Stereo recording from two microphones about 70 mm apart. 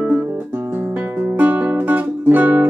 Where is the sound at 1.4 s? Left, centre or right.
Right.